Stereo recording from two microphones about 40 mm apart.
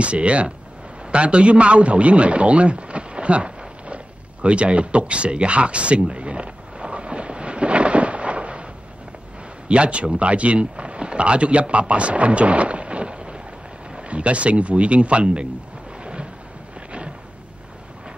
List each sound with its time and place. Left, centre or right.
0.0 s speech: right
1.1 s a sound: right
9.7 s speech: right
16.0 s thunder: right